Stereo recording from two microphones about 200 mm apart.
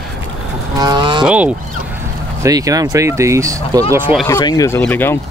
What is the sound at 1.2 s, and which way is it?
Speech, 5° right (ahead or behind).